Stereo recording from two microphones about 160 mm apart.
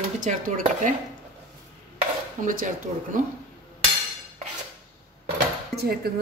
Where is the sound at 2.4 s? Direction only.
55° right (ahead or behind).